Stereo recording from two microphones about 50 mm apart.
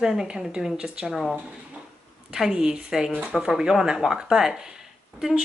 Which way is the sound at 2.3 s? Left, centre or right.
Centre.